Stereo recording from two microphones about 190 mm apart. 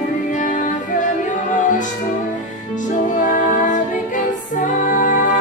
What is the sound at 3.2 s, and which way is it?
Music, 45° left (ahead or behind).